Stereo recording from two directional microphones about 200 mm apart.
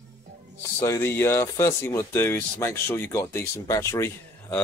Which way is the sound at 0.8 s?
10° left (ahead or behind).